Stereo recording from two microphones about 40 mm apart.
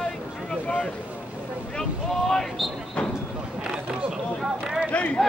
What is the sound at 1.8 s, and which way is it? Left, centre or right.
Boat, centre.